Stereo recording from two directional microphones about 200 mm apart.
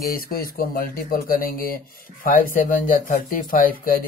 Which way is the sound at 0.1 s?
45° left (ahead or behind).